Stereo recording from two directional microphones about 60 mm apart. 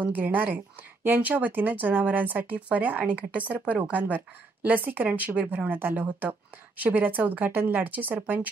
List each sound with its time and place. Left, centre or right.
0.0 s speech: right